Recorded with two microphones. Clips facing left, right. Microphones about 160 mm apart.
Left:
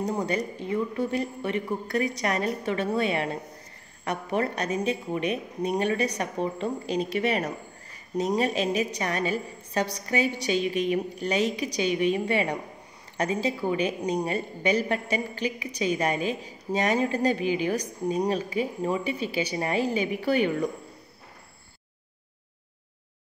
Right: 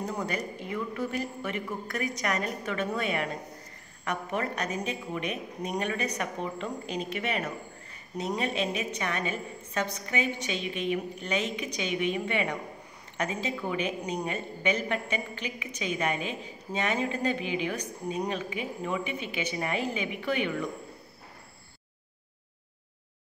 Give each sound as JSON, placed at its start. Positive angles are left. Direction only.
{"t": 0.0, "sound": "a woman's voice", "side_deg": 30}